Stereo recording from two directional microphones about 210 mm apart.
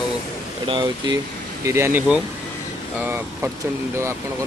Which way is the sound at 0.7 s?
20° right (ahead or behind).